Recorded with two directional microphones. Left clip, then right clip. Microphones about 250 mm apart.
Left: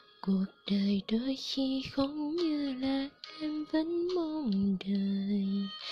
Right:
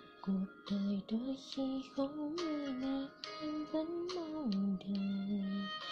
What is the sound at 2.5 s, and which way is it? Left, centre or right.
Music, left.